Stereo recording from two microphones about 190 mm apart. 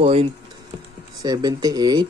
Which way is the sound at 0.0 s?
30° right (ahead or behind).